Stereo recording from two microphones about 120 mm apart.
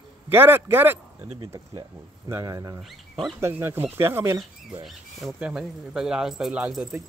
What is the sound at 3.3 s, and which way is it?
Speech, 20° right (ahead or behind).